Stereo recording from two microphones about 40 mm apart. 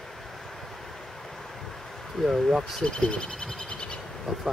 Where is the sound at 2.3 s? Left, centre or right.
Centre.